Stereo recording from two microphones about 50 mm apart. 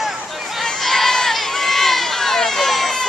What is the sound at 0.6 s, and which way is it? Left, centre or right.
Run, centre.